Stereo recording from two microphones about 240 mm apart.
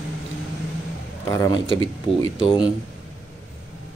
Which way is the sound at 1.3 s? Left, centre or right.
Centre.